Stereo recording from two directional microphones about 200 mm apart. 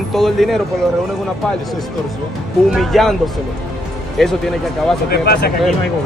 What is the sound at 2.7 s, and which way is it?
Speech, centre (ahead or behind).